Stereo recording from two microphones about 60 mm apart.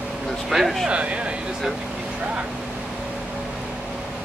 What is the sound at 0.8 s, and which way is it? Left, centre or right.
Speech, centre.